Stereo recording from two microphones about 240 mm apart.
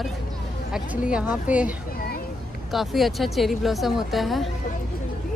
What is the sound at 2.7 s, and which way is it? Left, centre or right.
Speech, centre.